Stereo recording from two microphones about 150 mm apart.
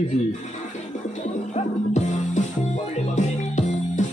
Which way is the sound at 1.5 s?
55° left (ahead or behind).